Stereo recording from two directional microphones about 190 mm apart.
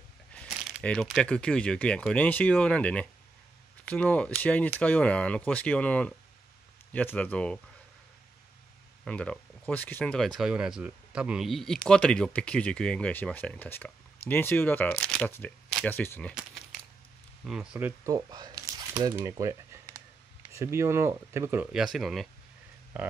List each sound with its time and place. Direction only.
0.3 s a sound: 5° left (ahead or behind)
1.1 s speech: 5° left (ahead or behind)
9.0 s speech: 5° left (ahead or behind)
17.5 s speech: 5° right (ahead or behind)